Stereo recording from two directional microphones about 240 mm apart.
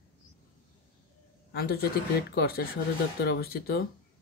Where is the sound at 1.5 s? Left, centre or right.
Left.